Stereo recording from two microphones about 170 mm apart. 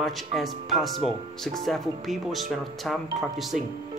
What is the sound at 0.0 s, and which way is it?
Speech, centre (ahead or behind).